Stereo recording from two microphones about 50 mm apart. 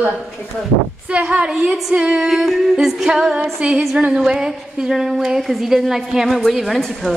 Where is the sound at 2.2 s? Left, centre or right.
Centre.